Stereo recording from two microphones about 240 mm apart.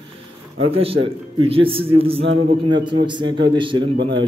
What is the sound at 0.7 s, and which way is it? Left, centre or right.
A man's voice, right.